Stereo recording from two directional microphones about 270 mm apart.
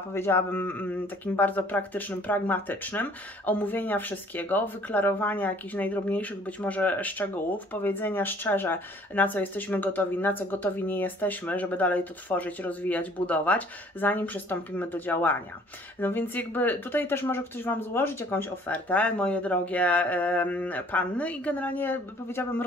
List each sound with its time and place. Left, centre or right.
0.1 s speech: centre